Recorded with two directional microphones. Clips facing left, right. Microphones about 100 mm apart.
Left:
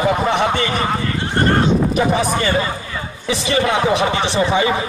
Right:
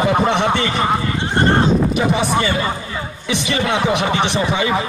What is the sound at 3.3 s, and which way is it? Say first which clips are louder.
A man's voice: left 2 dB; 35° left (ahead or behind).